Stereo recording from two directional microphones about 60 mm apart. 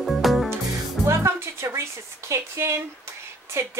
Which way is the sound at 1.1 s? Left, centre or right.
Right.